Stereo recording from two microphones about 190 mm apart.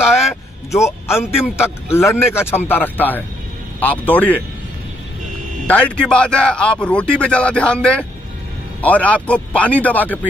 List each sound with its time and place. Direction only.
0.7 s a man's voice: 15° left (ahead or behind)
5.7 s a man's voice: 5° left (ahead or behind)